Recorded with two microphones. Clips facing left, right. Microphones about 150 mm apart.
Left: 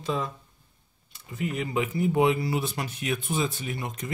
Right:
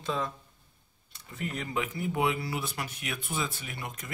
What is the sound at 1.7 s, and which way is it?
Speech, 25° left (ahead or behind).